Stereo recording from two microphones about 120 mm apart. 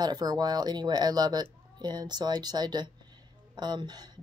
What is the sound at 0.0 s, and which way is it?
A woman's voice, 35° right (ahead or behind).